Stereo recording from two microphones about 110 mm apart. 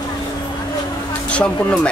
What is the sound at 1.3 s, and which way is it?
Speech, 10° left (ahead or behind).